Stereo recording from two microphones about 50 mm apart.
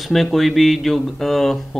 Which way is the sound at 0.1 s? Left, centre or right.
Centre.